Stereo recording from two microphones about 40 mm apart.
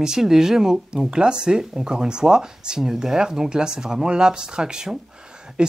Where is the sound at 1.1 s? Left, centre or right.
Right.